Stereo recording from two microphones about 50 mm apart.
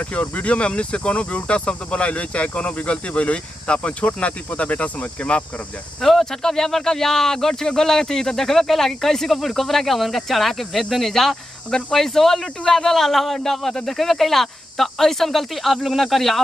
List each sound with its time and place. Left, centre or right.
0.1 s speech: left
5.9 s speech: centre